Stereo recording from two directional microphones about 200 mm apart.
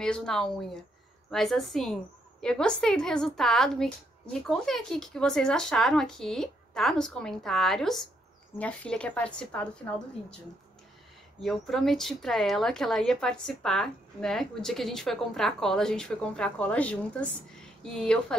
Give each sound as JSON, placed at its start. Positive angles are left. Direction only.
{"t": 0.0, "sound": "speech", "side_deg": 5}
{"t": 11.4, "sound": "speech", "side_deg": 0}